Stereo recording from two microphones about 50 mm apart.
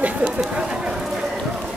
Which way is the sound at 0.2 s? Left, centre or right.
Right.